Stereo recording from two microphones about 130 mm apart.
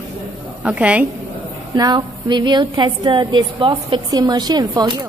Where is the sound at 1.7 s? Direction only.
30° right (ahead or behind).